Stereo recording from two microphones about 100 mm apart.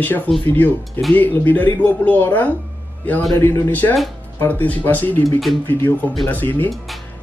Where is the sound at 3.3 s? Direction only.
30° left (ahead or behind).